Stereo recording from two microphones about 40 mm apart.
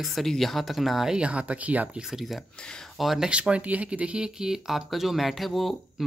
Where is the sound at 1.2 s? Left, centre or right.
Right.